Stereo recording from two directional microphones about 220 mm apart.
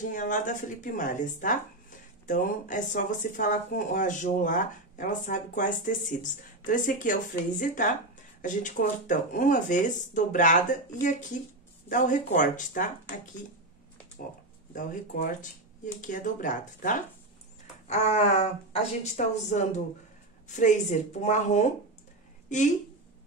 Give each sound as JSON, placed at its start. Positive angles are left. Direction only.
{"t": 0.0, "sound": "speech", "side_deg": 35}
{"t": 14.7, "sound": "speech", "side_deg": 35}